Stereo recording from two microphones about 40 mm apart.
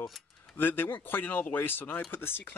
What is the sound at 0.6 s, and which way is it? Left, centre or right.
Speech, left.